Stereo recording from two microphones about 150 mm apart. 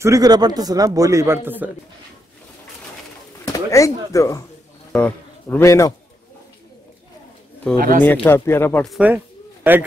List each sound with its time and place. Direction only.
0.0 s a man's voice: 25° right (ahead or behind)
3.4 s speech: 20° left (ahead or behind)
4.9 s a sound: 10° left (ahead or behind)
5.6 s a man's voice: 20° left (ahead or behind)
7.7 s speech: 65° right (ahead or behind)
8.0 s speech: 10° left (ahead or behind)
9.0 s a sound: 10° right (ahead or behind)